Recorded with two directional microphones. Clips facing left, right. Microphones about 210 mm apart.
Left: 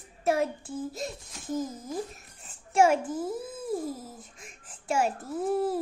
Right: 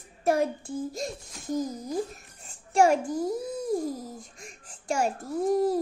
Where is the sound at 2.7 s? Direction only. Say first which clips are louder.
Right 1 dB; 5° left (ahead or behind).